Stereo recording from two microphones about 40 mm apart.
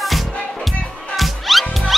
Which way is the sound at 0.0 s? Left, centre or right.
Centre.